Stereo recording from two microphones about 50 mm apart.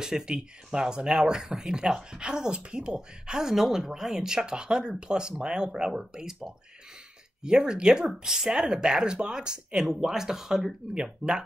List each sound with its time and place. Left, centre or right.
0.0 s speech: centre